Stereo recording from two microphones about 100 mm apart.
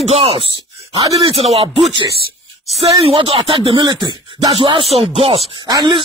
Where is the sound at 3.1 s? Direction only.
60° right (ahead or behind).